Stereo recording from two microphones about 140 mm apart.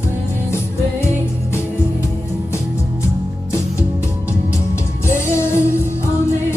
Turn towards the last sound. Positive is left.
turn(degrees=20)  # may be behind; listen again after turning